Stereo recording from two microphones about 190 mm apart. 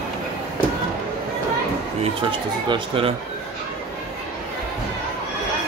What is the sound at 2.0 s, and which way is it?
Speech, 25° right (ahead or behind).